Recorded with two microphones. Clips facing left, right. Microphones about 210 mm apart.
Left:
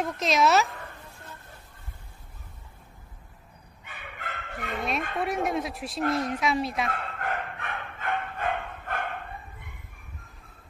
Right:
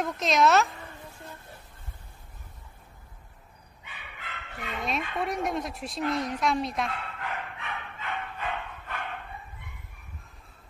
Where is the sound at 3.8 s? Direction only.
50° left (ahead or behind).